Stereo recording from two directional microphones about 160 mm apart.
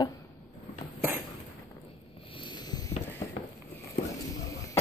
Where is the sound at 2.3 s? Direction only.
30° left (ahead or behind).